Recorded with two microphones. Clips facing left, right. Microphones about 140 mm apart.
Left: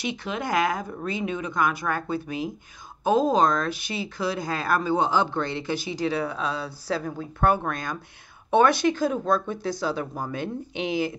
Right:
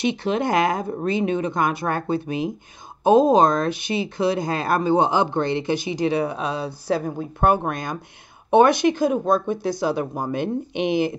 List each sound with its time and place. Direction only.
0.0 s speech: 25° right (ahead or behind)